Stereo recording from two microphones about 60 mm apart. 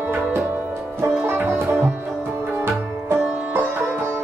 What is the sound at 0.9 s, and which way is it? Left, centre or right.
Sitar, right.